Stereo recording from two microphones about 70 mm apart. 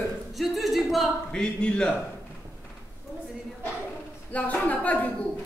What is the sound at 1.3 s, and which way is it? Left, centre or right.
Speech, centre.